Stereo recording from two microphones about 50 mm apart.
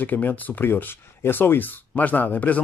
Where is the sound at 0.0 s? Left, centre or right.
Left.